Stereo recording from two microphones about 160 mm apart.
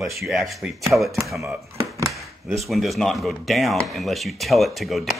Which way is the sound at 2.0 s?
20° right (ahead or behind).